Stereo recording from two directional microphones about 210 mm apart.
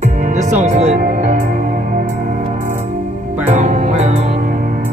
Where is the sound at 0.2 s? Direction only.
35° right (ahead or behind).